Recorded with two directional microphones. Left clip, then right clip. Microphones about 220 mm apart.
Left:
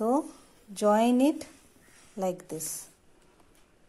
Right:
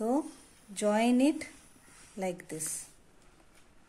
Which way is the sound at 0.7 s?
10° left (ahead or behind).